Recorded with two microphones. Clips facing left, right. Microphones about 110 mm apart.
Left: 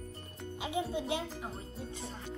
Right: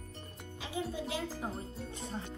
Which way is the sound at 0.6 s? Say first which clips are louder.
Left 3 dB; 20° left (ahead or behind).